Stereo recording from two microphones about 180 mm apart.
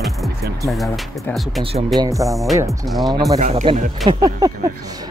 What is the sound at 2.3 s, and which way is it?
Speech, centre (ahead or behind).